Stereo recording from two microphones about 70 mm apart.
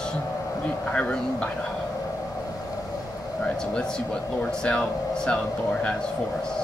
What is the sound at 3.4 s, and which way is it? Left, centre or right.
Speech, centre.